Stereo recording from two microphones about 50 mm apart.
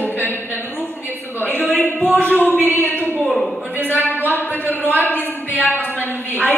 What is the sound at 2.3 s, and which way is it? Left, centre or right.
Speech, left.